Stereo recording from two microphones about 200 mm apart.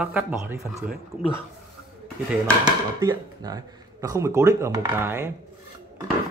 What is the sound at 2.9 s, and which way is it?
Speech, 20° right (ahead or behind).